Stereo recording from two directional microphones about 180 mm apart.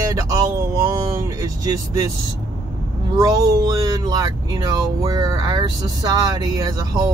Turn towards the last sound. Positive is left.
turn(degrees=-20)  # may be behind; listen again after turning